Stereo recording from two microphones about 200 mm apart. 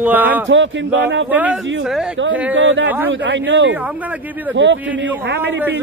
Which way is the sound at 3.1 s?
65° right (ahead or behind).